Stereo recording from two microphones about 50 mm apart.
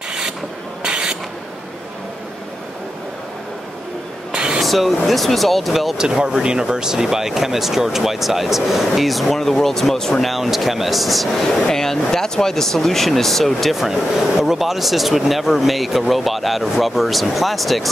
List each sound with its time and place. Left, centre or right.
0.8 s mechanisms: right
4.3 s a sound: centre
4.6 s speech: centre
5.9 s speech: centre
10.3 s speech: centre